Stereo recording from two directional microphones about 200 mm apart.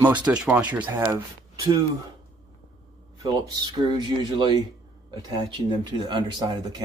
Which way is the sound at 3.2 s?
20° right (ahead or behind).